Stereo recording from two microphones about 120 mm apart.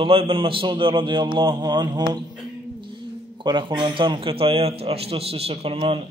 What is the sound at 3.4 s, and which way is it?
A man's voice, 40° right (ahead or behind).